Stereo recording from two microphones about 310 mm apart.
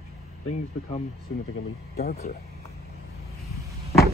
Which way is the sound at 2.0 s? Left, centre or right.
Left.